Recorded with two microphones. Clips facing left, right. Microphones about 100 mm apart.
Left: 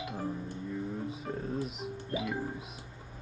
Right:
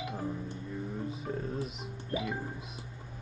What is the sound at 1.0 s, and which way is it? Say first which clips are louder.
Speech: even; centre (ahead or behind).